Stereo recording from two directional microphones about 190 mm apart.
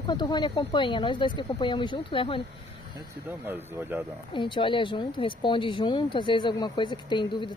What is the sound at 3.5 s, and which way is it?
Speech, 10° right (ahead or behind).